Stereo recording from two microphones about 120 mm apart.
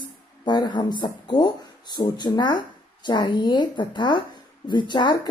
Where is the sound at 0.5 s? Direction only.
40° left (ahead or behind).